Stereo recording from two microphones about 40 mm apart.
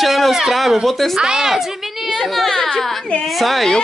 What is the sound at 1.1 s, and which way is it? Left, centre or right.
Speech, centre.